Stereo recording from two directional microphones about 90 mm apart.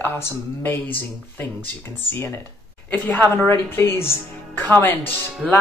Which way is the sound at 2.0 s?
25° left (ahead or behind).